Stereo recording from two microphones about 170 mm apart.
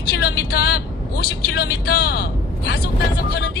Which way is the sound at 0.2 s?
65° left (ahead or behind).